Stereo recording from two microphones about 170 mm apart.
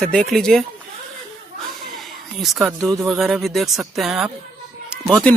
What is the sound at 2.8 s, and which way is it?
Speech, 20° right (ahead or behind).